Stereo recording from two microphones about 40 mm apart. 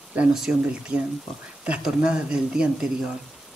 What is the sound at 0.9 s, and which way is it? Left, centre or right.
Speech, right.